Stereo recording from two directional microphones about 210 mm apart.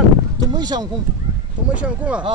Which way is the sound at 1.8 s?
5° right (ahead or behind).